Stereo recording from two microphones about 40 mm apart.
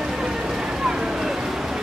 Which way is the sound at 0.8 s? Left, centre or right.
Centre.